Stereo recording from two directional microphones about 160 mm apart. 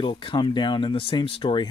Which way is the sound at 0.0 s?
30° left (ahead or behind).